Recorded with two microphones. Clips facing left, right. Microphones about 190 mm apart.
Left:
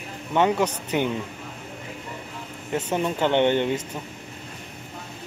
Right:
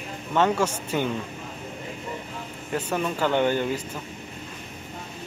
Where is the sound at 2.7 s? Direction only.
20° left (ahead or behind).